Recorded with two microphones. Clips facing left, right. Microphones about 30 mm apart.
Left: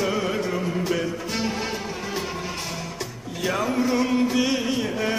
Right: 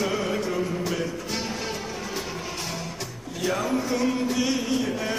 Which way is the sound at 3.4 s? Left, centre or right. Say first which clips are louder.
Left 2 dB; centre.